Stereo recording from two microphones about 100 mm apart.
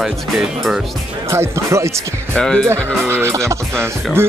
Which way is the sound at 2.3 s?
10° left (ahead or behind).